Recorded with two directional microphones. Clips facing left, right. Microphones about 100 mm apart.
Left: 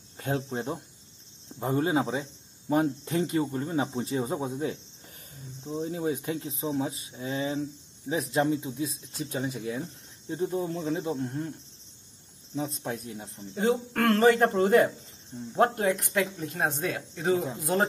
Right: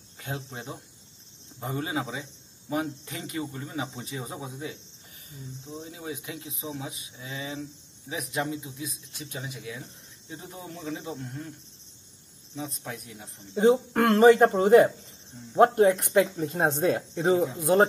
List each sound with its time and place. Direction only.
0.2 s speech: 35° left (ahead or behind)
5.8 s speech: 45° left (ahead or behind)
9.2 s speech: 45° left (ahead or behind)
12.5 s speech: 30° left (ahead or behind)
13.6 s speech: 20° right (ahead or behind)
15.5 s speech: 30° right (ahead or behind)